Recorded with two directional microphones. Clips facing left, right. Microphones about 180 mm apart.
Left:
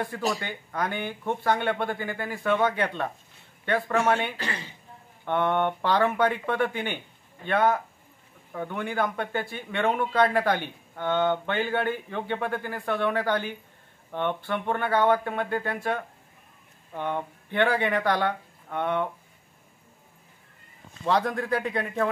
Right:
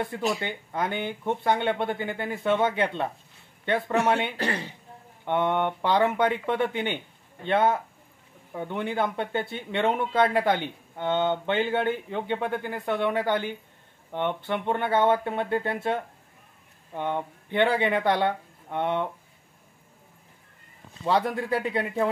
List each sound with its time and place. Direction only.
0.4 s speech: 20° right (ahead or behind)
4.4 s speech: 60° right (ahead or behind)
5.2 s speech: 20° right (ahead or behind)
21.8 s speech: 20° right (ahead or behind)